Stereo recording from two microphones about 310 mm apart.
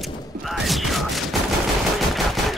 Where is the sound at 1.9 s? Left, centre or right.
Centre.